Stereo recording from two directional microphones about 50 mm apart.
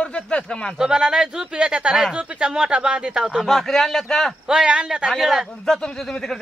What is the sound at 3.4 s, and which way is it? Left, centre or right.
Speech, centre.